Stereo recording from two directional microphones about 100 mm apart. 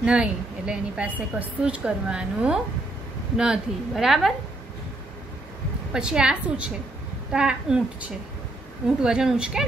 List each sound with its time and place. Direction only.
0.0 s a woman's voice: 10° right (ahead or behind)
5.9 s a woman's voice: 10° right (ahead or behind)